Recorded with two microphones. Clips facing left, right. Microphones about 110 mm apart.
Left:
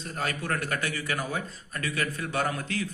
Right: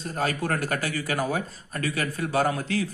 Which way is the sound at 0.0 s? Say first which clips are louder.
Right 5 dB; 35° right (ahead or behind).